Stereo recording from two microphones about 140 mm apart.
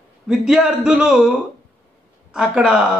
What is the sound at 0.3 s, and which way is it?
A man's voice, 5° right (ahead or behind).